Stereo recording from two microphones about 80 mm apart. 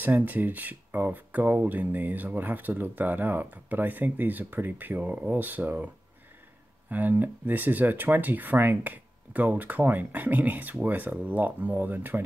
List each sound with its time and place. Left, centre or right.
0.0 s speech: right
6.9 s speech: right